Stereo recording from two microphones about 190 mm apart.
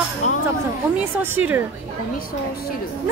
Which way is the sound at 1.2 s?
10° right (ahead or behind).